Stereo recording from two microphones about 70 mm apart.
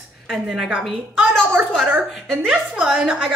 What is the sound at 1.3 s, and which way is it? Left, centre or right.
Speech, right.